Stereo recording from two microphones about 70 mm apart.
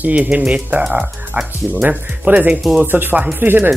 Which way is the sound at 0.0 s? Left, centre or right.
Right.